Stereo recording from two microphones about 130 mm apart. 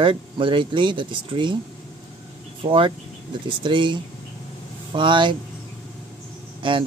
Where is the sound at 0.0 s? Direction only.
40° right (ahead or behind).